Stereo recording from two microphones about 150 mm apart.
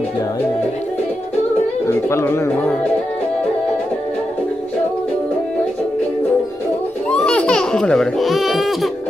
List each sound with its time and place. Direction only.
1.9 s speech: 20° left (ahead or behind)
7.1 s baby laughter: 5° left (ahead or behind)